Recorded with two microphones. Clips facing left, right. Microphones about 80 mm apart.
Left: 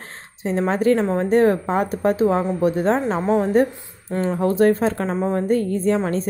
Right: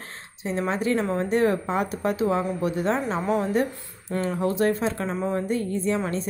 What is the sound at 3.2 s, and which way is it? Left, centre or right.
A woman's voice, left.